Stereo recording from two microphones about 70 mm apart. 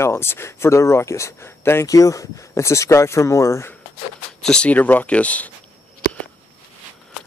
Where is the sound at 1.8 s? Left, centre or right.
Left.